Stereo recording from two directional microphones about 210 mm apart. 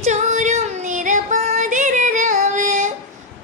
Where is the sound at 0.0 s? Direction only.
35° right (ahead or behind).